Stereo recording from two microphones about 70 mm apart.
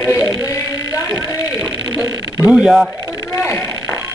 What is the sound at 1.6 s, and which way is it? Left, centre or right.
Speech, centre.